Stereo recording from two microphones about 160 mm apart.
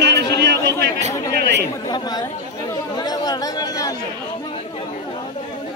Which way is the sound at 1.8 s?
25° left (ahead or behind).